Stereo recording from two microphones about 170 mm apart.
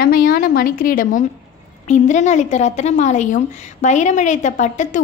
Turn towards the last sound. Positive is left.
turn(degrees=45)  # may be behind; listen again after turning